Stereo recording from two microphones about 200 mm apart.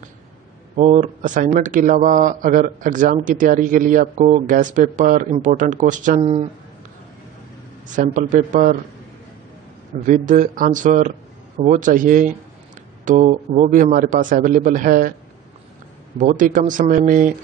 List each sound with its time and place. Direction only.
0.7 s speech: 35° right (ahead or behind)
7.9 s speech: 40° right (ahead or behind)
10.0 s a man's voice: 40° right (ahead or behind)
16.2 s speech: 40° right (ahead or behind)